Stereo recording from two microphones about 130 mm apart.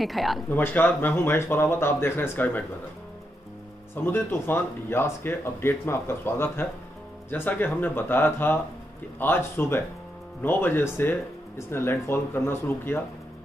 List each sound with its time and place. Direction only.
0.0 s speech: centre (ahead or behind)
0.5 s speech: 15° left (ahead or behind)
3.9 s speech: 15° left (ahead or behind)